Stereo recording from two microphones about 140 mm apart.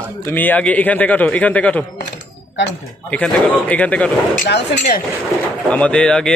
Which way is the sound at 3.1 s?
10° left (ahead or behind).